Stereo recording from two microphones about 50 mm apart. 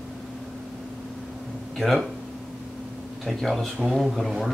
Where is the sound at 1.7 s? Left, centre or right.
Centre.